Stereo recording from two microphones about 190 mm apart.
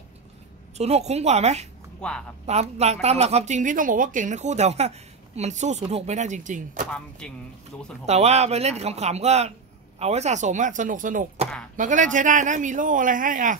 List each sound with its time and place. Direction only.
0.7 s a woman's voice: 35° right (ahead or behind)
2.0 s speech: 5° left (ahead or behind)
2.4 s a woman's voice: 35° right (ahead or behind)
6.9 s speech: 5° left (ahead or behind)
8.1 s a woman's voice: 35° right (ahead or behind)